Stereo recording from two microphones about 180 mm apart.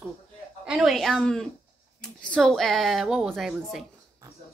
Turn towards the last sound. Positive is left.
turn(degrees=0)  # may be behind; listen again after turning